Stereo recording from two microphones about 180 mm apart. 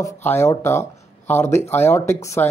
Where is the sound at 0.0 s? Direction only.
10° left (ahead or behind).